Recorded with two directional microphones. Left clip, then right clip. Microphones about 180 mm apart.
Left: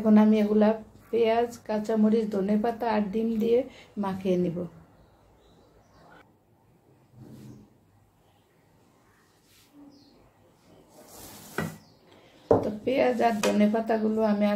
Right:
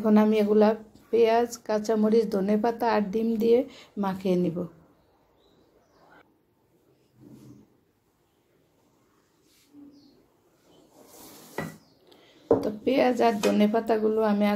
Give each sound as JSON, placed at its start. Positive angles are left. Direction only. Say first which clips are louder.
{"t": 0.0, "sound": "speech", "louder": "right 1 dB", "side_deg": -45}
{"t": 12.5, "sound": "speech", "louder": "right 1 dB", "side_deg": -50}